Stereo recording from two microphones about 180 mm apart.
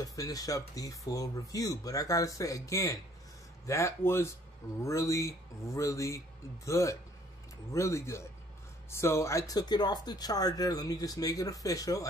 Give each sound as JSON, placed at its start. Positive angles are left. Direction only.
{"t": 0.0, "sound": "speech", "side_deg": 20}